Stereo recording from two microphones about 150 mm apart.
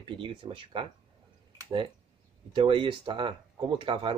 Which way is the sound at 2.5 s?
35° right (ahead or behind).